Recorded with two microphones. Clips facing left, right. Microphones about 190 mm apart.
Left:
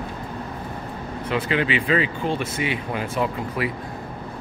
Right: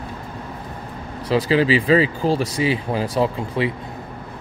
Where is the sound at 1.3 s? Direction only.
35° right (ahead or behind).